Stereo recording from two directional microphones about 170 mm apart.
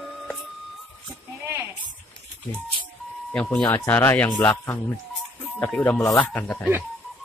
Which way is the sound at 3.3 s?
10° left (ahead or behind).